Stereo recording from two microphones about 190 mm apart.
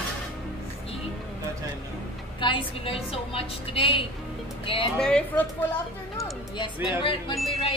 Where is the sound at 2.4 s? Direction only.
25° left (ahead or behind).